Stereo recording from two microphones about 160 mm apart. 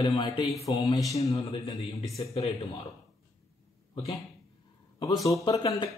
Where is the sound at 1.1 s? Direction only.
40° left (ahead or behind).